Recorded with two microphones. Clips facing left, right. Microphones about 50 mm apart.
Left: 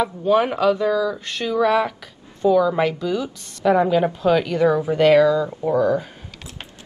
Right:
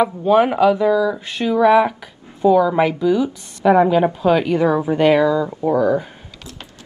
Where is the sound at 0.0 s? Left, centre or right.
Centre.